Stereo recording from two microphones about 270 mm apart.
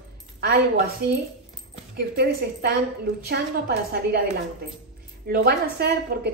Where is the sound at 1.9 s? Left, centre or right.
Right.